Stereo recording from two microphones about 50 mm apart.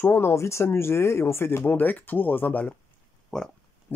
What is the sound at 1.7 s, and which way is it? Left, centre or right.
Speech, left.